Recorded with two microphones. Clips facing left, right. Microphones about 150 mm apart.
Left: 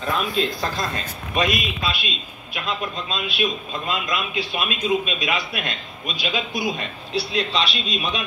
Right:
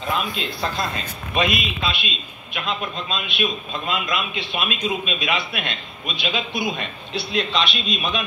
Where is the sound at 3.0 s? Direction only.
35° left (ahead or behind).